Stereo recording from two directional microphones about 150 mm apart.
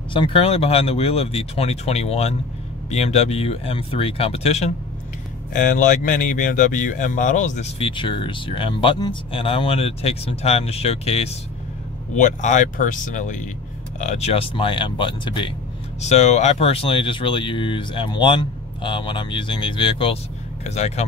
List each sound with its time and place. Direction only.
0.1 s speech: 35° left (ahead or behind)
5.5 s speech: 60° left (ahead or behind)
7.9 s speech: 35° left (ahead or behind)
12.2 s speech: 55° left (ahead or behind); by 15.5 s 35° left (ahead or behind)
16.0 s speech: 50° left (ahead or behind)
20.6 s speech: 45° left (ahead or behind)